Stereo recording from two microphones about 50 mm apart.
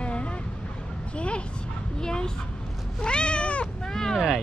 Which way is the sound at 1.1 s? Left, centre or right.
Left.